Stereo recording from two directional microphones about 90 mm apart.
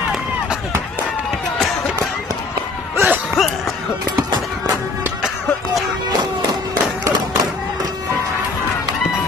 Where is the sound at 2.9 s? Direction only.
25° right (ahead or behind).